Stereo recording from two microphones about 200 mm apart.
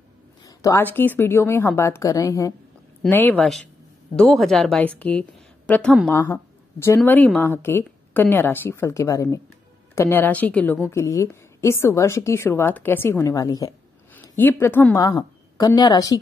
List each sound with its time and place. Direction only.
0.5 s a woman's voice: 15° left (ahead or behind)